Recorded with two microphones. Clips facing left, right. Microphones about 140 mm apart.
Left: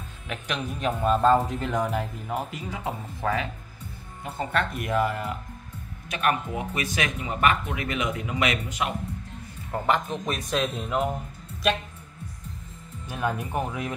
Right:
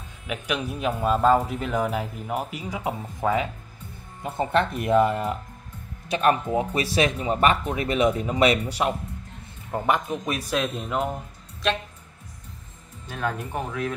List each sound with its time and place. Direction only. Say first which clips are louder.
0.3 s speech: right 3 dB; 10° right (ahead or behind); by 8.9 s 35° right (ahead or behind)
9.7 s speech: right 1 dB; 15° right (ahead or behind)
10.5 s speech: even; centre (ahead or behind)
13.1 s speech: left 1 dB; 15° left (ahead or behind)